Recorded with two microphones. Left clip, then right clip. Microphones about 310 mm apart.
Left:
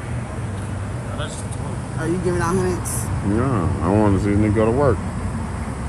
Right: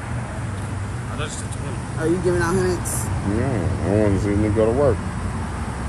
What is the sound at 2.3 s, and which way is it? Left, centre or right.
Speech, left.